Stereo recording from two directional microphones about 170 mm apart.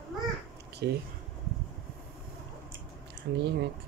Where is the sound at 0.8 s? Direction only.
90° right.